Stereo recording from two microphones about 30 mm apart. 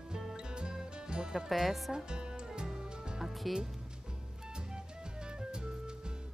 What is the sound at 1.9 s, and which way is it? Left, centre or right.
Music, right.